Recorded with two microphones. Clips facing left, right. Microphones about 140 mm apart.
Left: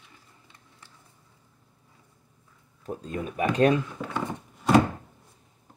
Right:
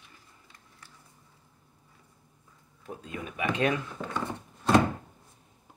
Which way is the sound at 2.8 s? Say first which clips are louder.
Left 6 dB; 40° left (ahead or behind).